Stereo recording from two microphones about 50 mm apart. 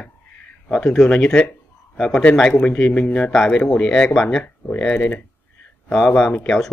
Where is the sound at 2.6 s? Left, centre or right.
Left.